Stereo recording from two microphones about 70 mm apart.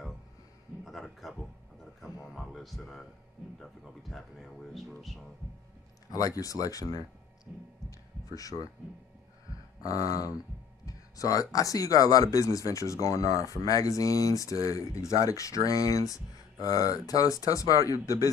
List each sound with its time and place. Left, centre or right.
0.8 s a sound: centre
3.8 s speech: centre
6.1 s speech: left
8.3 s speech: left
9.8 s speech: left